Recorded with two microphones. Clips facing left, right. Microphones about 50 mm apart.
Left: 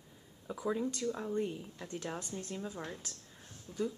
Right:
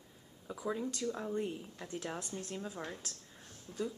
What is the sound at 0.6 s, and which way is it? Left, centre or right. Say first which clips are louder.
Speech: left 2 dB; centre.